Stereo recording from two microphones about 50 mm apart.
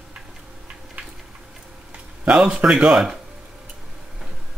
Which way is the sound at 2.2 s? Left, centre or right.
Right.